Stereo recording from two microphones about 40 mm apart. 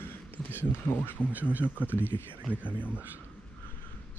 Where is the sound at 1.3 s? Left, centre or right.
Right.